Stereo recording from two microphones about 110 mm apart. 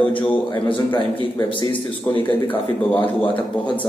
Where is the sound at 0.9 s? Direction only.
45° left (ahead or behind).